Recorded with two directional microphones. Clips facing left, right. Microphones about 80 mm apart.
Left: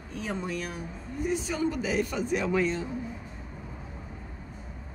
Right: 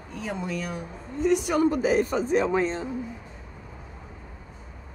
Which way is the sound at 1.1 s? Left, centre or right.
Right.